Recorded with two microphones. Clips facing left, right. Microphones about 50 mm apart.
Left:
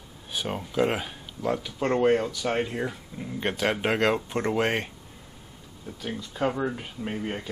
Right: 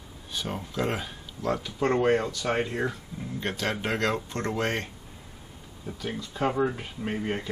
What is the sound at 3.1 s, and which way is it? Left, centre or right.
Speech, centre.